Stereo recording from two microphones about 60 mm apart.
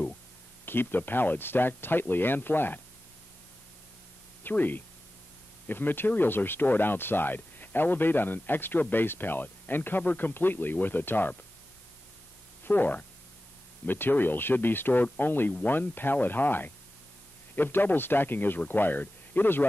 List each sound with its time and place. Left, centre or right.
0.7 s speech: left
4.4 s speech: left
12.6 s speech: left